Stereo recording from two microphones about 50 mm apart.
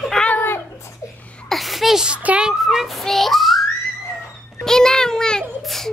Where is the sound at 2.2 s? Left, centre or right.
Right.